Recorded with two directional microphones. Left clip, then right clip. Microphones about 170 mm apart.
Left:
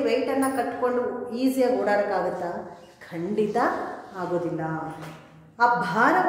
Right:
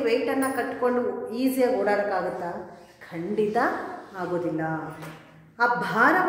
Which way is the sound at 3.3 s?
Centre (ahead or behind).